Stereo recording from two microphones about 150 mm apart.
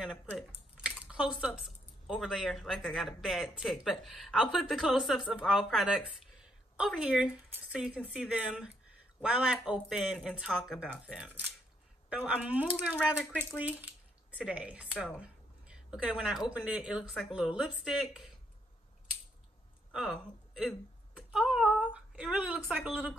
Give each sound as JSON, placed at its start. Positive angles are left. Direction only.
{"t": 0.7, "sound": "speech", "side_deg": -5}
{"t": 19.9, "sound": "a woman's voice", "side_deg": 0}